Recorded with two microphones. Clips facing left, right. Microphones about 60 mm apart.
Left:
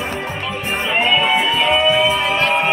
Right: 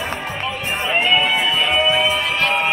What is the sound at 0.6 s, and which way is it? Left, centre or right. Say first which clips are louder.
Music: left 1 dB; centre.